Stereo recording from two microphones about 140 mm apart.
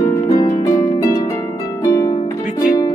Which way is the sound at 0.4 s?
35° left (ahead or behind).